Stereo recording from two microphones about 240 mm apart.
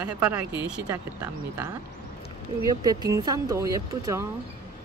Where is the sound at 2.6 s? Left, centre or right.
Centre.